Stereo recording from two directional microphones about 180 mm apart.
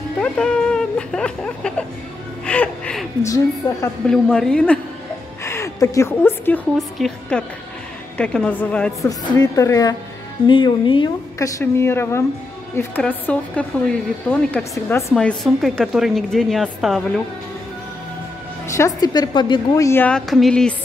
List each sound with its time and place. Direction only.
0.2 s speech: 5° left (ahead or behind)
2.4 s music: 5° left (ahead or behind)
3.2 s a woman's voice: 15° left (ahead or behind)
4.1 s a woman's voice: 5° left (ahead or behind)
5.4 s a woman's voice: 15° left (ahead or behind)
9.4 s a woman's voice: 20° left (ahead or behind)
15.1 s a woman's voice: centre (ahead or behind)
18.8 s a woman's voice: 20° left (ahead or behind); by 20.7 s 5° left (ahead or behind)